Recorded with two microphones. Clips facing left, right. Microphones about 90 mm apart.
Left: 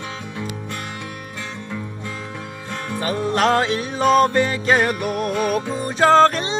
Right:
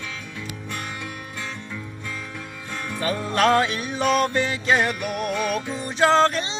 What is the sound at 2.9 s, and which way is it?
Music, 25° left (ahead or behind).